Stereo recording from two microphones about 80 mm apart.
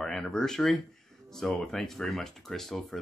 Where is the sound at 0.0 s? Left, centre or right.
Centre.